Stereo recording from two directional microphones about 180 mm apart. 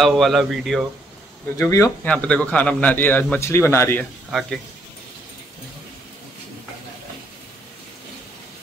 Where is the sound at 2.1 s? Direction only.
5° left (ahead or behind).